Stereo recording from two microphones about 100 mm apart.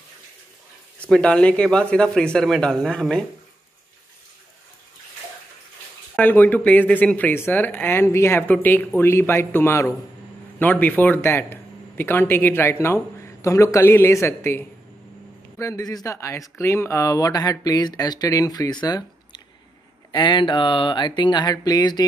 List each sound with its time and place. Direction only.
0.9 s speech: 10° left (ahead or behind)
6.1 s speech: 15° left (ahead or behind)
10.6 s speech: 15° left (ahead or behind); by 19.0 s 40° left (ahead or behind)
20.1 s speech: 50° left (ahead or behind)